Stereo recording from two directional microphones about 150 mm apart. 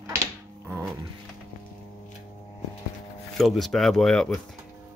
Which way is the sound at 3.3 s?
Centre (ahead or behind).